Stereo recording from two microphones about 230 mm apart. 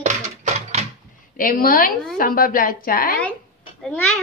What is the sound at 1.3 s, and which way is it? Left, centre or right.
Speech, left.